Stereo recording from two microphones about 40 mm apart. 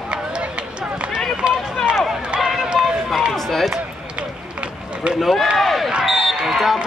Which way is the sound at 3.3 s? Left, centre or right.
Centre.